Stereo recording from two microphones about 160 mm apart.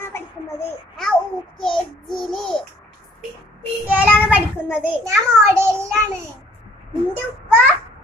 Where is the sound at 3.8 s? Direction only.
10° right (ahead or behind).